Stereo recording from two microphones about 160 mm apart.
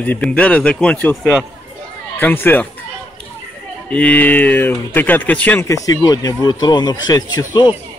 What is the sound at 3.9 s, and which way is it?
Speech, 10° left (ahead or behind).